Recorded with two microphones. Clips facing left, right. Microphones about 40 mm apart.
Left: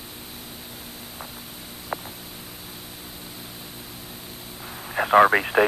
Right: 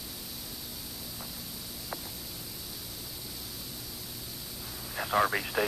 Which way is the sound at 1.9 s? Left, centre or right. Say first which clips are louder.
Left 9 dB; left.